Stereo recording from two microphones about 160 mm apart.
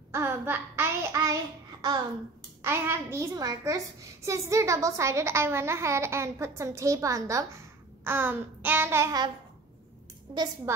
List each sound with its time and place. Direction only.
0.1 s child singing: 15° right (ahead or behind)
2.6 s a child's voice: 15° right (ahead or behind)
10.3 s speech: 25° right (ahead or behind)